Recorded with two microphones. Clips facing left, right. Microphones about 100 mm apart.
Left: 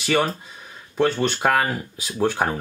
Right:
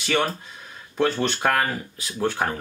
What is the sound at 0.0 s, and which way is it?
Speech, 5° left (ahead or behind).